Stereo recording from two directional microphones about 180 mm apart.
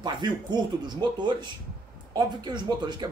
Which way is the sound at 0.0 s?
25° right (ahead or behind).